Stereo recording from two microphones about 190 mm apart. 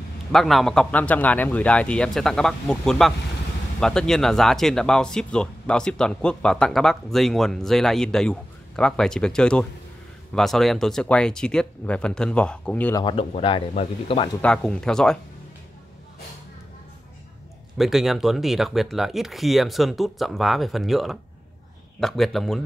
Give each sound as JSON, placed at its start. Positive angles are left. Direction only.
{"t": 0.3, "sound": "speech", "side_deg": 0}
{"t": 12.9, "sound": "speech", "side_deg": 25}
{"t": 14.4, "sound": "speech", "side_deg": 5}
{"t": 17.7, "sound": "speech", "side_deg": 0}